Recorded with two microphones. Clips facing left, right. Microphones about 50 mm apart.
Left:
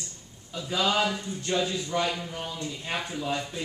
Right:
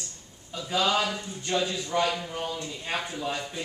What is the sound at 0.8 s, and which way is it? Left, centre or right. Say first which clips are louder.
Speech: even; centre.